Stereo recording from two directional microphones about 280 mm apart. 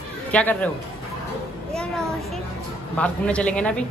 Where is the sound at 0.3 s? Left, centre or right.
Centre.